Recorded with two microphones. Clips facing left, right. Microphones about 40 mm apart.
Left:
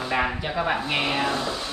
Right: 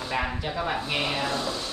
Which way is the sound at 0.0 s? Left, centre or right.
Left.